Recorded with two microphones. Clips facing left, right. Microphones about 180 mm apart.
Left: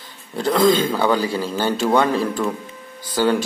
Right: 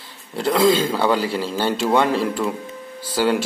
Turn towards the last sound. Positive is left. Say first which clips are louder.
# left 1 dB
turn(degrees=-10)  # may be behind; listen again after turning